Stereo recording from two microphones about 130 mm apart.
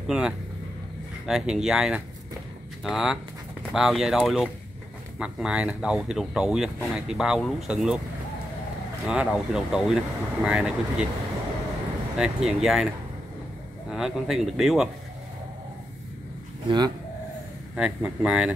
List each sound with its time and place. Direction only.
0.0 s speech: 5° right (ahead or behind)
9.0 s speech: 5° right (ahead or behind)
12.2 s speech: 5° right (ahead or behind)
16.6 s speech: 35° right (ahead or behind)
17.7 s speech: 10° right (ahead or behind)